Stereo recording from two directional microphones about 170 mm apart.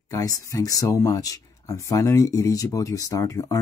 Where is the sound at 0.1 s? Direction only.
20° left (ahead or behind).